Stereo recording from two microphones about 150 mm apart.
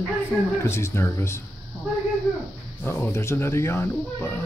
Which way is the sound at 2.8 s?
15° left (ahead or behind).